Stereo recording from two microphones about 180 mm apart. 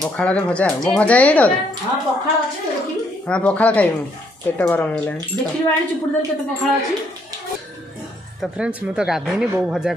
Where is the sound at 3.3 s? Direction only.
5° left (ahead or behind).